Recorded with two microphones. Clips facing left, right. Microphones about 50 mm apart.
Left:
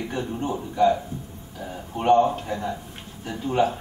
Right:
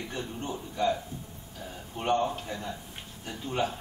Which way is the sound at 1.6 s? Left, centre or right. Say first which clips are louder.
Left 9 dB; centre.